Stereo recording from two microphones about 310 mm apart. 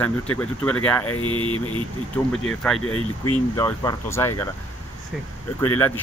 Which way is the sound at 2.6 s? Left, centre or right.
Centre.